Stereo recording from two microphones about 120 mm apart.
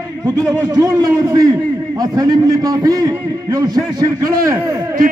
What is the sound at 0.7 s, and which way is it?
A man's voice, 30° right (ahead or behind).